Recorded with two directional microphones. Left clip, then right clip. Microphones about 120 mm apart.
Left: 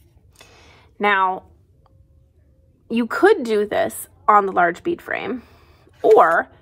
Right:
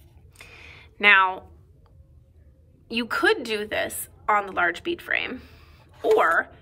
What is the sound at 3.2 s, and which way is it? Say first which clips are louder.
A woman's voice: left 7 dB; 55° left (ahead or behind).